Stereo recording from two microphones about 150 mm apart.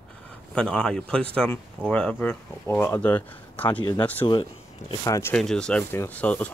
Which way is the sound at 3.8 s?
25° left (ahead or behind).